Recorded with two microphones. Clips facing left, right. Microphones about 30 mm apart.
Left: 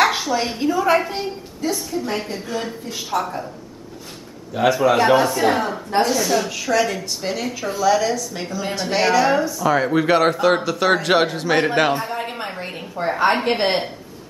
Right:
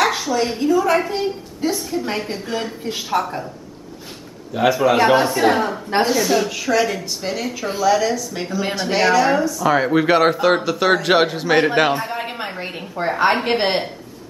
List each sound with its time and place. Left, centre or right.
0.0 s a woman's voice: centre
1.6 s speech: right
2.3 s speech: centre
3.2 s speech: right
4.6 s speech: centre
5.1 s speech: centre
5.5 s speech: centre
9.6 s speech: centre